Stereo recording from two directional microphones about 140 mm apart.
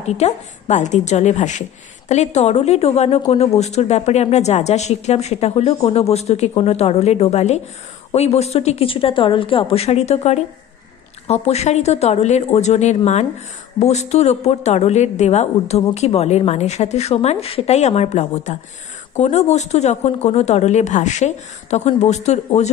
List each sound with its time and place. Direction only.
0.0 s a woman's voice: 55° left (ahead or behind)